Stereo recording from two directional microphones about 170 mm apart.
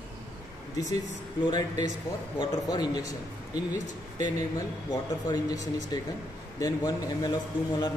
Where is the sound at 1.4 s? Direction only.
25° left (ahead or behind).